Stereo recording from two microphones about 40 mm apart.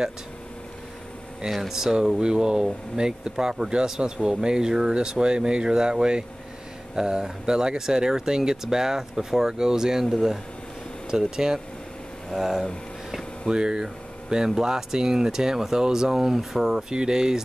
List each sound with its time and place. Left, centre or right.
1.5 s speech: centre
11.1 s speech: centre